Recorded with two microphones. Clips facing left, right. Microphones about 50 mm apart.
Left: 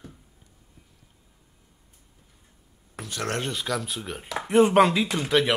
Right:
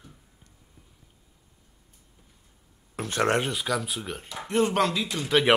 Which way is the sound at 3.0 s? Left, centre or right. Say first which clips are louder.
Right 7 dB; right.